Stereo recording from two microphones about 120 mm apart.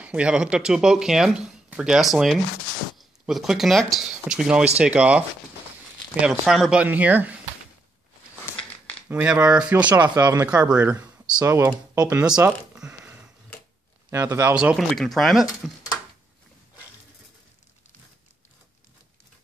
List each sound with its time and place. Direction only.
0.0 s speech: 10° right (ahead or behind)
6.2 s speech: centre (ahead or behind)
9.1 s speech: 10° right (ahead or behind)
10.1 s speech: 30° right (ahead or behind)
10.5 s speech: 10° right (ahead or behind)
11.4 s speech: 20° right (ahead or behind)
12.0 s speech: 10° right (ahead or behind)